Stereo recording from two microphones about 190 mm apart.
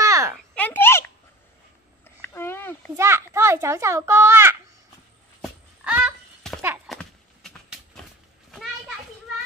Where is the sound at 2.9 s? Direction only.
15° right (ahead or behind).